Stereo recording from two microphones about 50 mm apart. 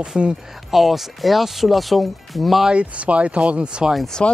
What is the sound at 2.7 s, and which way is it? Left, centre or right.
Speech, right.